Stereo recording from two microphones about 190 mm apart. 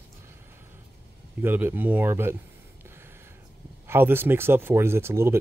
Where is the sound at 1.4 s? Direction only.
10° right (ahead or behind).